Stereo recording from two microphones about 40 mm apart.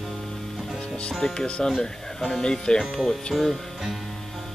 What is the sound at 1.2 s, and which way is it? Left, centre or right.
Speech, left.